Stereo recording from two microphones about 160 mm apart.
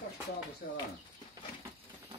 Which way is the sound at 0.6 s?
90° left.